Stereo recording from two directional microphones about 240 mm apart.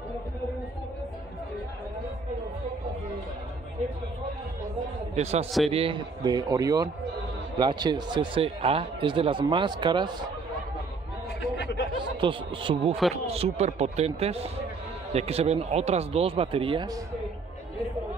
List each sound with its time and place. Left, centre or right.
5.1 s a man's voice: right
11.6 s a sound: left
12.2 s a man's voice: right